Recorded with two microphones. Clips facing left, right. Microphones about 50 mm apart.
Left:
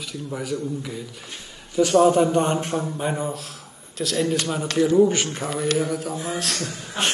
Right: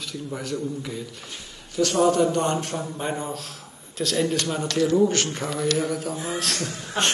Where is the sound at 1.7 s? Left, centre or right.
Centre.